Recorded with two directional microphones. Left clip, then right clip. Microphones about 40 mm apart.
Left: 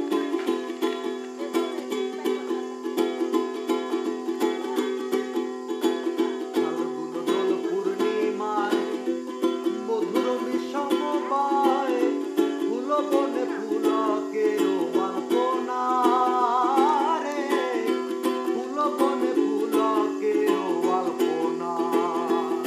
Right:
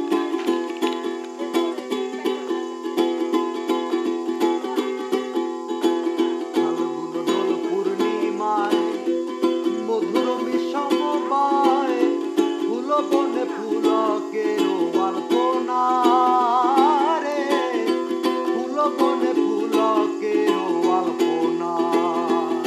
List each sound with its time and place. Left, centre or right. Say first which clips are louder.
3.9 s music: right 4 dB; centre